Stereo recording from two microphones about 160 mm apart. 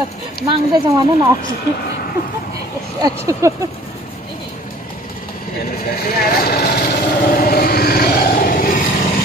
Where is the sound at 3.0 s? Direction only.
20° right (ahead or behind).